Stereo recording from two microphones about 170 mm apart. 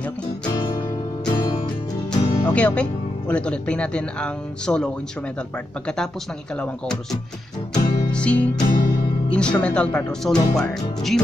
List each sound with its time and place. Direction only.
0.5 s music: 25° left (ahead or behind)
2.5 s speech: 5° left (ahead or behind)
6.6 s speech: 5° left (ahead or behind)
7.7 s music: 20° left (ahead or behind)
8.1 s speech: 5° left (ahead or behind)
8.5 s music: 25° left (ahead or behind)
9.3 s speech: 5° left (ahead or behind)